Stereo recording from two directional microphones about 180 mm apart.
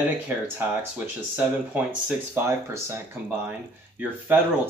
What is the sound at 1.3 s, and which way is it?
Speech, 10° right (ahead or behind).